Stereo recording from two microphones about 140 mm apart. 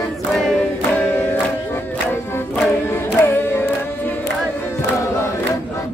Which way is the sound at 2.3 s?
15° left (ahead or behind).